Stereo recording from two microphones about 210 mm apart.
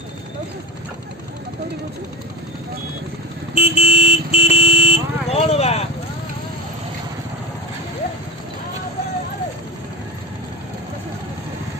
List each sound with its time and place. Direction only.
3.5 s vehicle: 30° left (ahead or behind)